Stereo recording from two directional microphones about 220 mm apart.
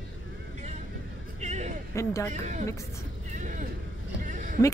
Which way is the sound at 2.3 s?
35° right (ahead or behind).